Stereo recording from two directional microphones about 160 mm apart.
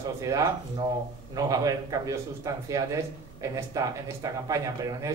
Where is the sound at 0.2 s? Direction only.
20° right (ahead or behind).